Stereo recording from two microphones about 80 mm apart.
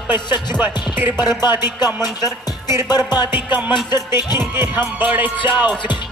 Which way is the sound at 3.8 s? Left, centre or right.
Left.